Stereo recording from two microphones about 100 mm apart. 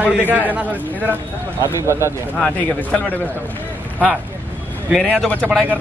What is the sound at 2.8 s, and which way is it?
Speech, 15° left (ahead or behind).